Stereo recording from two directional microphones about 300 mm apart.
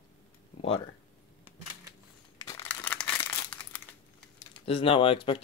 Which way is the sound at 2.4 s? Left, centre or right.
Centre.